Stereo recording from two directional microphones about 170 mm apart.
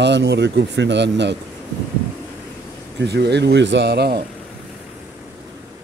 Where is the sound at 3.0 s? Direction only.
80° right.